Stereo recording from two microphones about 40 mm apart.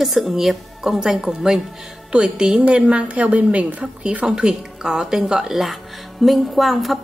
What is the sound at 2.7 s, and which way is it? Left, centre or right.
A woman's voice, right.